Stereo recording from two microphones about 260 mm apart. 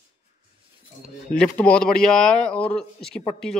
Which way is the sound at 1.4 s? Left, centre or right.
Centre.